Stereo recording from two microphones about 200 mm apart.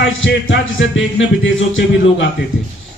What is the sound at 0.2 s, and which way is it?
Speech, 65° left (ahead or behind).